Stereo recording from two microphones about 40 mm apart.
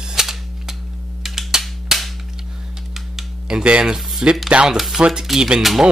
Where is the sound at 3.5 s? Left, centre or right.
Right.